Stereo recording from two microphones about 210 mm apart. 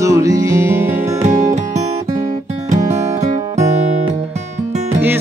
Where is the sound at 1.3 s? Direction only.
35° right (ahead or behind).